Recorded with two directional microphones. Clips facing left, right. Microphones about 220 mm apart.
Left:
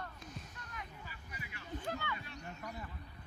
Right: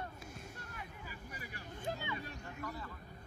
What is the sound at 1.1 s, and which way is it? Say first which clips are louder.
Vehicle: right 3 dB; 40° right (ahead or behind).